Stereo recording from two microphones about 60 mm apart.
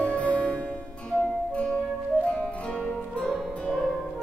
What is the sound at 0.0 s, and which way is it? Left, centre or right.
Music, left.